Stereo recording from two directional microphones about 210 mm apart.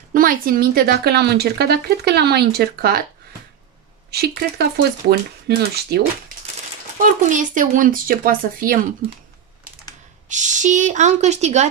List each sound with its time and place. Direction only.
0.1 s a woman's voice: 40° right (ahead or behind)
4.1 s a woman's voice: 50° right (ahead or behind)
7.0 s speech: 35° right (ahead or behind)
10.2 s speech: 35° right (ahead or behind)